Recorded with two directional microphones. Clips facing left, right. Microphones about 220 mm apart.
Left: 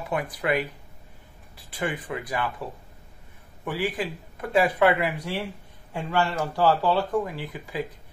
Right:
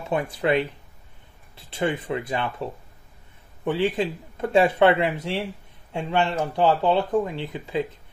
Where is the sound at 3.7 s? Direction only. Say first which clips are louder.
Right 5 dB; 25° right (ahead or behind).